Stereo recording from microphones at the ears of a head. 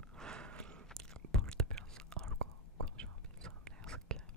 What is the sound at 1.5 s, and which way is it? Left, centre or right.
Whispering, right.